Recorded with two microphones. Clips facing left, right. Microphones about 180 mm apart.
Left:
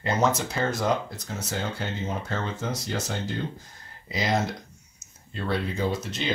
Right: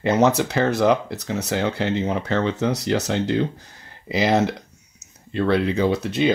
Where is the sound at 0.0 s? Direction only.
70° right (ahead or behind).